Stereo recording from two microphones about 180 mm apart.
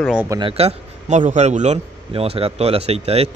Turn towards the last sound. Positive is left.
turn(degrees=-35)  # may be behind; listen again after turning